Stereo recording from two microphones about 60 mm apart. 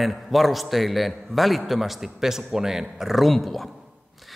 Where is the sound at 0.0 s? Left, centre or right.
Centre.